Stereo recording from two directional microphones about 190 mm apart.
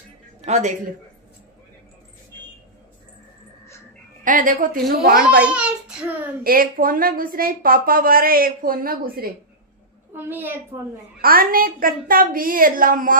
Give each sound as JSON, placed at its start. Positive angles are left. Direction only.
{"t": 0.5, "sound": "a woman's voice", "side_deg": -40}
{"t": 4.2, "sound": "a woman's voice", "side_deg": -45}
{"t": 5.4, "sound": "a child's voice", "side_deg": -5}
{"t": 6.4, "sound": "a woman's voice", "side_deg": -50}
{"t": 10.1, "sound": "a woman's voice", "side_deg": -10}
{"t": 11.1, "sound": "a woman's voice", "side_deg": -50}